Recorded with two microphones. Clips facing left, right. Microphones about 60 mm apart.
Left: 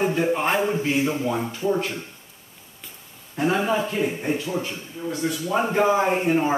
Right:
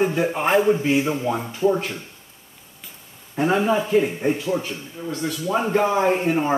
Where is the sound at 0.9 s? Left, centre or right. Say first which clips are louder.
Right 2 dB; centre.